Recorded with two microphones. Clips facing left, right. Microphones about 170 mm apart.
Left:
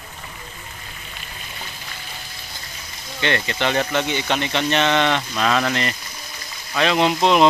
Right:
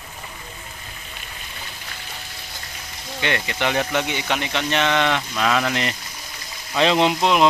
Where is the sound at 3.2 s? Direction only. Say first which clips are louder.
Left 2 dB; 10° right (ahead or behind).